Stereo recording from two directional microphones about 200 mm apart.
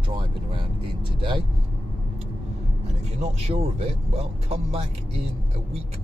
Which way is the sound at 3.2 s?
30° right (ahead or behind).